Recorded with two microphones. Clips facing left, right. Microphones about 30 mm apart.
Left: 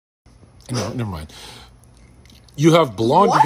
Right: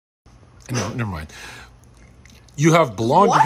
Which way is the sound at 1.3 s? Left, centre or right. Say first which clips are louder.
Right 2 dB; centre.